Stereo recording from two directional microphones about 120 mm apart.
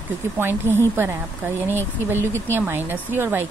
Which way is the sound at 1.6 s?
20° right (ahead or behind).